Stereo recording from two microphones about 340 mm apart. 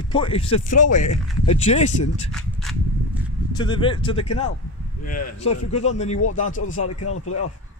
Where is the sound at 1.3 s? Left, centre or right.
Left.